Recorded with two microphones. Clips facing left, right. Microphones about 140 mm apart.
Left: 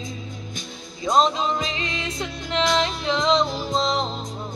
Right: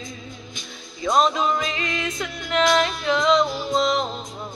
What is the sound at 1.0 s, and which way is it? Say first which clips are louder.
Music: even; 25° left (ahead or behind).